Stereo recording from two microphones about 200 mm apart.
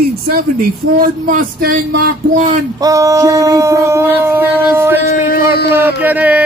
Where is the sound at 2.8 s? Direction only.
15° right (ahead or behind).